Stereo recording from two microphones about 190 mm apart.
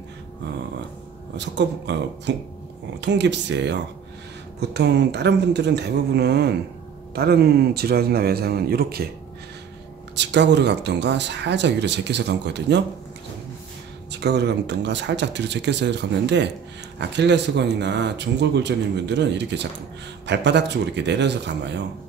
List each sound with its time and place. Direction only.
1.3 s speech: 65° right (ahead or behind)
10.1 s speech: 65° right (ahead or behind)
14.2 s speech: 60° right (ahead or behind)